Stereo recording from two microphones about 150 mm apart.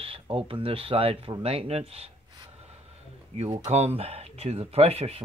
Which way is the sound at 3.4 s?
45° right (ahead or behind).